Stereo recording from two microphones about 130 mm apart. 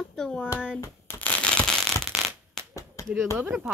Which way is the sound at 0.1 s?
5° left (ahead or behind).